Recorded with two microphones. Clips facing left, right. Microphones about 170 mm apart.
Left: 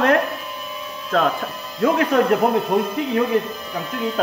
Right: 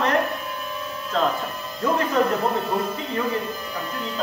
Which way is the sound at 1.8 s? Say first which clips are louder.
Left 4 dB; 70° left (ahead or behind).